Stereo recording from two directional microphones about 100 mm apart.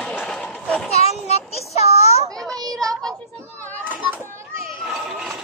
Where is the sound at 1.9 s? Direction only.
90° left.